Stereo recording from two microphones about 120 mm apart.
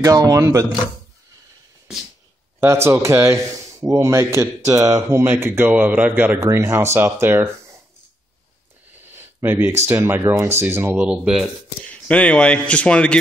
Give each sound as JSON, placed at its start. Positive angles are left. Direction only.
{"t": 0.0, "sound": "speech", "side_deg": -30}
{"t": 2.6, "sound": "speech", "side_deg": -20}
{"t": 8.9, "sound": "a sound", "side_deg": -20}
{"t": 9.8, "sound": "speech", "side_deg": -20}
{"t": 11.8, "sound": "speech", "side_deg": 10}